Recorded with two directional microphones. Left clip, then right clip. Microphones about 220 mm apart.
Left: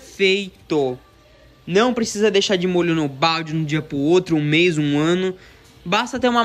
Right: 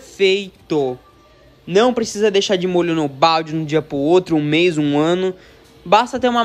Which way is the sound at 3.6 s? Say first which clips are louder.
Right 4 dB; 25° right (ahead or behind).